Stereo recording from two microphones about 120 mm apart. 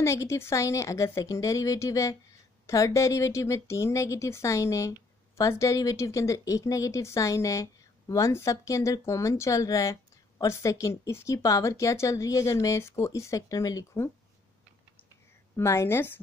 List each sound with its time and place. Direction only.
0.0 s speech: 25° left (ahead or behind)
15.5 s speech: 25° left (ahead or behind)